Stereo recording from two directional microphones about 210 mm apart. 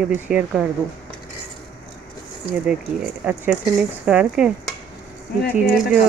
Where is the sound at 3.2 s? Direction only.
5° right (ahead or behind).